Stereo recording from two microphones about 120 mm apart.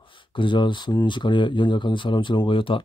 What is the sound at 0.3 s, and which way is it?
Speech, 45° left (ahead or behind).